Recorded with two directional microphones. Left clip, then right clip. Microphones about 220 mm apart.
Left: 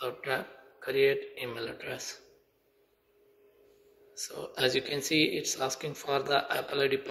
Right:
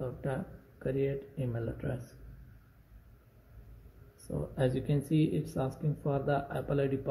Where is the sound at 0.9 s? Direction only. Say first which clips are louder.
Left 8 dB; 20° left (ahead or behind).